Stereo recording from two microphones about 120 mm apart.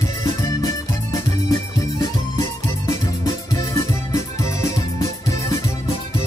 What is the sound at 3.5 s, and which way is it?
Music, 25° left (ahead or behind).